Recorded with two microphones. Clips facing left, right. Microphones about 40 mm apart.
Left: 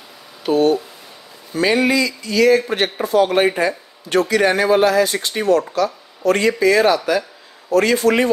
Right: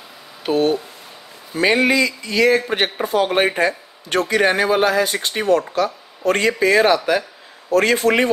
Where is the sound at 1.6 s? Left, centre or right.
Right.